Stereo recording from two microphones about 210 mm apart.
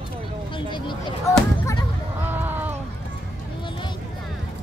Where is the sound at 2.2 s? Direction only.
10° right (ahead or behind).